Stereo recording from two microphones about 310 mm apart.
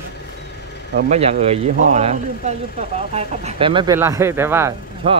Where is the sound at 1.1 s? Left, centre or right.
Right.